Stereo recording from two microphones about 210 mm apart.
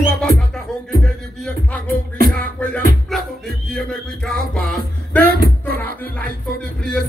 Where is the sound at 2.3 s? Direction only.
5° left (ahead or behind).